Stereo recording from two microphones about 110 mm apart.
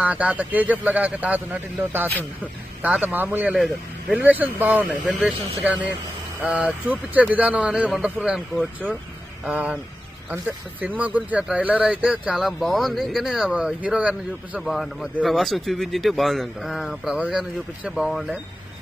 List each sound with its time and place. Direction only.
0.0 s speech: 15° right (ahead or behind)
2.0 s speech: 15° left (ahead or behind)
2.8 s speech: 15° right (ahead or behind)
3.5 s speech: centre (ahead or behind)
4.2 s speech: 15° right (ahead or behind)
9.5 s speech: 10° right (ahead or behind)
14.6 s speech: centre (ahead or behind)